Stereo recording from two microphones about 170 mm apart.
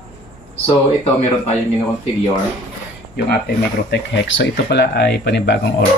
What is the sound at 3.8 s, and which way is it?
Speech, 90° left.